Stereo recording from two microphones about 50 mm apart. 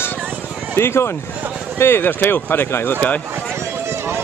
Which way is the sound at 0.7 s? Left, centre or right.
Left.